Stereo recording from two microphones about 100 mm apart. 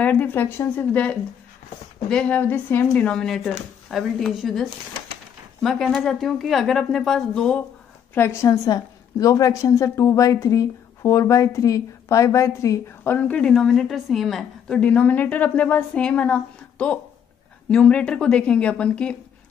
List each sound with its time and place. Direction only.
0.0 s a woman's voice: 15° left (ahead or behind)
8.1 s a woman's voice: 25° left (ahead or behind)
13.0 s a woman's voice: 15° left (ahead or behind)